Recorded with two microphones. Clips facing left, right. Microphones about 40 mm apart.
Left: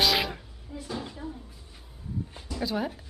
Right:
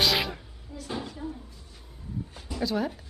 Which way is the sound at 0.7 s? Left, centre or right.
Centre.